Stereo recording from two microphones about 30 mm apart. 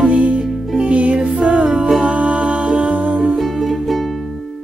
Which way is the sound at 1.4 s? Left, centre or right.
Right.